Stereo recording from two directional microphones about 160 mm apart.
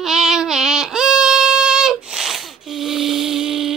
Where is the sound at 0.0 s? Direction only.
5° right (ahead or behind).